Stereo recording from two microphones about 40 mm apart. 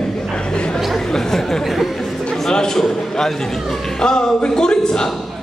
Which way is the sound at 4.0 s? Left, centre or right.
Centre.